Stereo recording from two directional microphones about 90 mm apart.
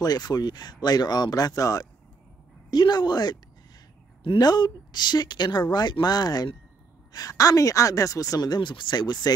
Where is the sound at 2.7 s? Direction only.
55° left (ahead or behind).